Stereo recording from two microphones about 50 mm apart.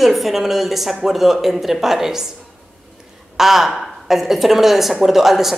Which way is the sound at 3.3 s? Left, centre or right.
Centre.